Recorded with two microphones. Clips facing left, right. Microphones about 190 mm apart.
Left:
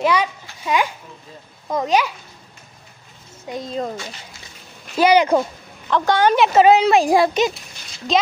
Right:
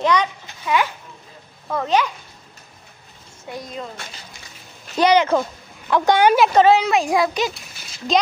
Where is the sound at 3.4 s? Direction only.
25° left (ahead or behind).